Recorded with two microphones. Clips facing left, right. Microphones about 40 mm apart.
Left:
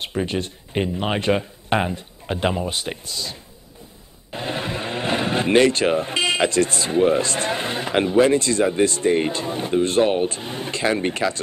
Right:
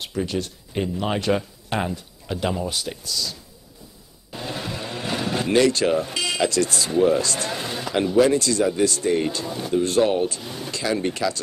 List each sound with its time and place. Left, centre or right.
0.0 s speech: left